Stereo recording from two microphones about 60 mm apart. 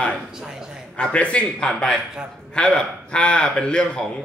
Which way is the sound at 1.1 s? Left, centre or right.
Centre.